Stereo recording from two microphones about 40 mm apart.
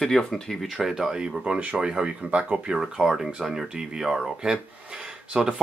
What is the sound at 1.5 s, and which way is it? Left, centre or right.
Speech, right.